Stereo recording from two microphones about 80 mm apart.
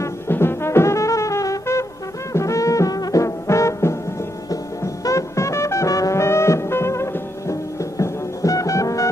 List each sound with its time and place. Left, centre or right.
0.0 s brass instrument: left
4.5 s music: left